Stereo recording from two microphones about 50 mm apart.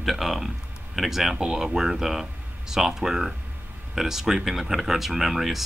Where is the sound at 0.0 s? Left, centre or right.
Centre.